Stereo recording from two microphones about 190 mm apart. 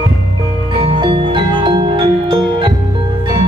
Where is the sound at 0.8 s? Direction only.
25° right (ahead or behind).